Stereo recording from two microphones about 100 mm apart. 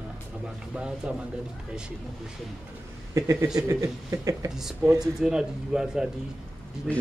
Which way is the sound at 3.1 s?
30° right (ahead or behind).